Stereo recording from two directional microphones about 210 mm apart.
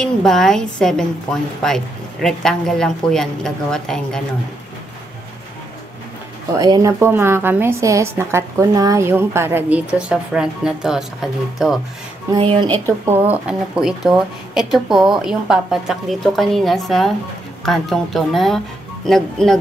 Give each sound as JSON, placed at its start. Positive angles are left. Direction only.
{"t": 0.0, "sound": "speech", "side_deg": 5}
{"t": 6.5, "sound": "a woman's voice", "side_deg": -15}
{"t": 12.3, "sound": "a woman's voice", "side_deg": -25}
{"t": 12.8, "sound": "a woman's voice", "side_deg": -15}